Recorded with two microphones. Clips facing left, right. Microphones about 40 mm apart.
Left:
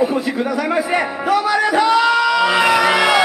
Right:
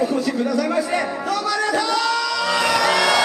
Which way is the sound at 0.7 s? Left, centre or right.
Left.